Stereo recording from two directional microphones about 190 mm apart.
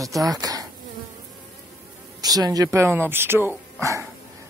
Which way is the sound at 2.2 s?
20° right (ahead or behind).